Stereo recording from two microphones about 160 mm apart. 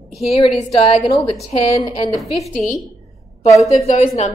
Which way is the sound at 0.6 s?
45° left (ahead or behind).